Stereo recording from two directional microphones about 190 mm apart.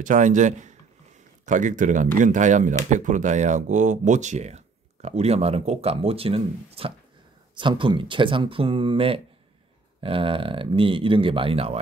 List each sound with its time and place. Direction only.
0.0 s speech: 40° right (ahead or behind)